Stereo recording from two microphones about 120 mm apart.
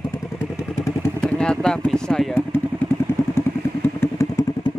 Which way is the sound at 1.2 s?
5° left (ahead or behind).